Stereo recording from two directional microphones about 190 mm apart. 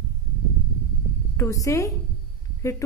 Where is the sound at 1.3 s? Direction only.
15° left (ahead or behind).